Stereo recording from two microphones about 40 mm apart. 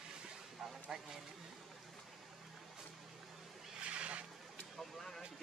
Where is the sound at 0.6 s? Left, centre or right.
Centre.